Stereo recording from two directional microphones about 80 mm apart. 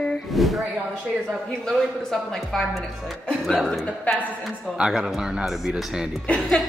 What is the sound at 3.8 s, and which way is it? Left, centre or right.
Speech, centre.